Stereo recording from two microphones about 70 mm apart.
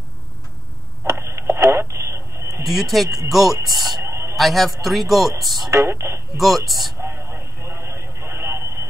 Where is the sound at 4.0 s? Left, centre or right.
Right.